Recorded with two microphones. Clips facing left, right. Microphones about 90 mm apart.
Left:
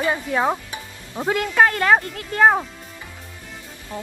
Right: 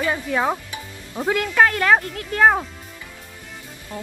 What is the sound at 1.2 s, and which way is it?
Speech, 15° left (ahead or behind).